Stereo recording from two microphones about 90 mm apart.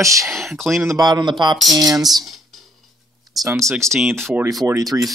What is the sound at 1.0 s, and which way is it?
Speech, 50° right (ahead or behind).